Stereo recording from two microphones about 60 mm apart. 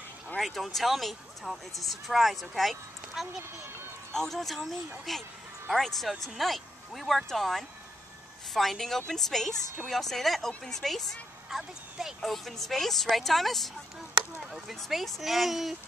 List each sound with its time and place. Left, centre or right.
0.4 s speech: centre